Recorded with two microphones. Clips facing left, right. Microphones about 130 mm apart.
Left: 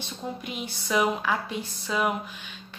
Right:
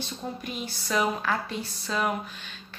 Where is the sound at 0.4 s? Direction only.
15° left (ahead or behind).